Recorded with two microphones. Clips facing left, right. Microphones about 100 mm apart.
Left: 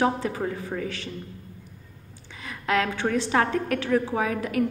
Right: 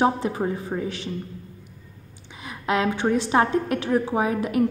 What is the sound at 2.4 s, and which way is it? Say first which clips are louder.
A woman's voice: right 2 dB; 20° right (ahead or behind).